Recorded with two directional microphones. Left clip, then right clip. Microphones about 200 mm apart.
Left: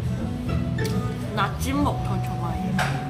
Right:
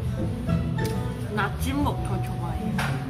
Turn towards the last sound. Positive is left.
turn(degrees=0)  # may be behind; listen again after turning